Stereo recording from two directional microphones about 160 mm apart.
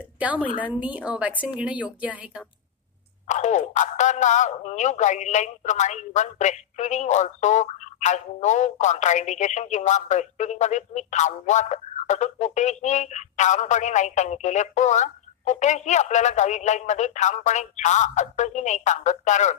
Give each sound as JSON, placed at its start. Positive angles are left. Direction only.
{"t": 0.2, "sound": "a woman's voice", "side_deg": -10}
{"t": 3.3, "sound": "speech", "side_deg": 45}